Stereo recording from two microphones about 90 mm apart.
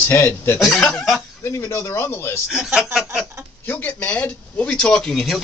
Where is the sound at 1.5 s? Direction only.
30° left (ahead or behind).